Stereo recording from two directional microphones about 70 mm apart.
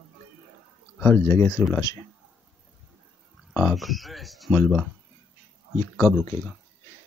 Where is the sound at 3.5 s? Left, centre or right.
Centre.